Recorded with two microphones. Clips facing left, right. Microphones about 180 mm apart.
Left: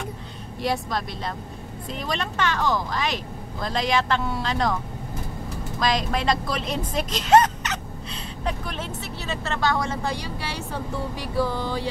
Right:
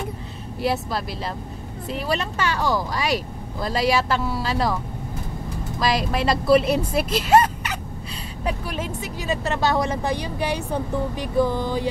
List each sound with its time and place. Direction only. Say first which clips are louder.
0.6 s speech: right 2 dB; 5° right (ahead or behind)
5.8 s speech: right 2 dB; 5° right (ahead or behind)